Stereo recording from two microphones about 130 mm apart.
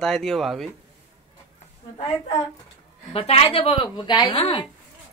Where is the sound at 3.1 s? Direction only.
45° left (ahead or behind).